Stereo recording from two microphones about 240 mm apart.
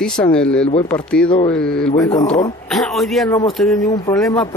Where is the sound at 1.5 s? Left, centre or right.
Centre.